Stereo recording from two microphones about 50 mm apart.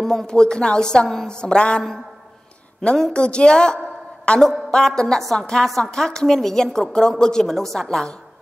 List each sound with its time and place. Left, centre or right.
0.0 s a woman's voice: centre
5.2 s a woman's voice: centre